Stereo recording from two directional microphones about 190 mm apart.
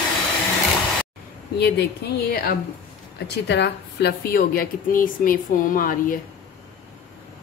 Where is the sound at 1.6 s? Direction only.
55° left (ahead or behind).